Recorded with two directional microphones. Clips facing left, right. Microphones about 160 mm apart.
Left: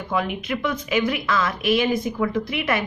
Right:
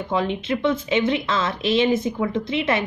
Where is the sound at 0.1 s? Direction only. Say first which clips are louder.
Right 2 dB; 25° right (ahead or behind).